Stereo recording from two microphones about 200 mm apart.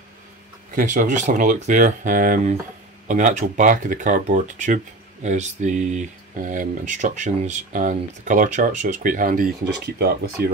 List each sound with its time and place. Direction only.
0.7 s speech: 40° right (ahead or behind)